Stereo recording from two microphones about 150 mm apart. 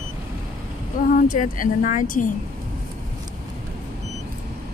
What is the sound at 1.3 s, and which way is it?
Speech, 60° left (ahead or behind).